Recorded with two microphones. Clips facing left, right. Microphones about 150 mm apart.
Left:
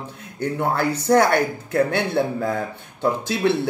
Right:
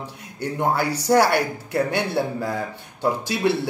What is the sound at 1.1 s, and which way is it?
A man's voice, 5° right (ahead or behind).